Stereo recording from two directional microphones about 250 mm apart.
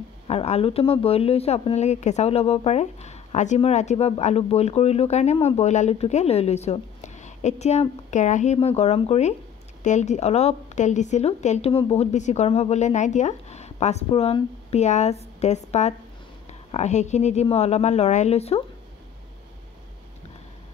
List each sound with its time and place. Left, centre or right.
0.3 s speech: left